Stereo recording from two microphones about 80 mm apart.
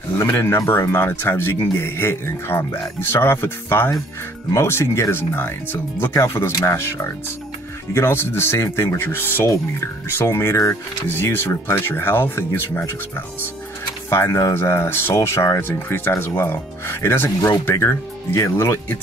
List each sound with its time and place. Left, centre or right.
0.2 s speech: left
14.1 s speech: left